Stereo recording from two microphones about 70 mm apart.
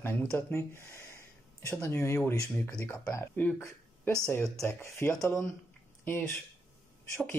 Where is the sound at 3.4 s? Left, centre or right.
Left.